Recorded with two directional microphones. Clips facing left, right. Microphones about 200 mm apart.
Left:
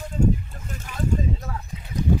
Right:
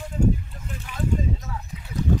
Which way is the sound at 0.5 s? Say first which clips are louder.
Even; 45° left (ahead or behind).